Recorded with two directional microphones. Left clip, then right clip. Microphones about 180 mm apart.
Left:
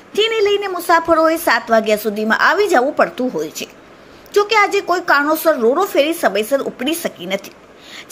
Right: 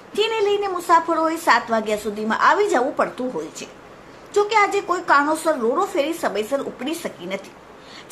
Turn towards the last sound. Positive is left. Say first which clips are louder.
# left 6 dB
turn(degrees=25)  # may be behind; listen again after turning